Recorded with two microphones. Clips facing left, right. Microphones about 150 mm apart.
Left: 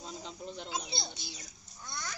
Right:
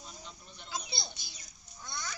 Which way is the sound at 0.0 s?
90° left.